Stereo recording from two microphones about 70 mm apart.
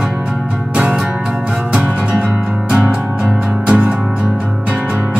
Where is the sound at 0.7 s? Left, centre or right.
Centre.